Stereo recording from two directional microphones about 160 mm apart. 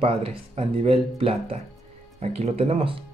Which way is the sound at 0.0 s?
35° right (ahead or behind).